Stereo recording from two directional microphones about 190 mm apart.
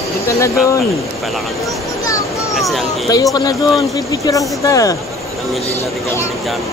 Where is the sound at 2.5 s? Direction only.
Centre (ahead or behind).